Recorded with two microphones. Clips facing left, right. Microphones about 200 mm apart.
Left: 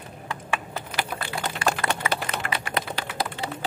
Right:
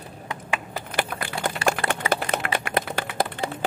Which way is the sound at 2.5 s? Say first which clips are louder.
Right 4 dB; 50° right (ahead or behind).